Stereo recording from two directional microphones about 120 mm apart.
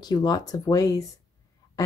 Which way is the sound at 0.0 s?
35° left (ahead or behind).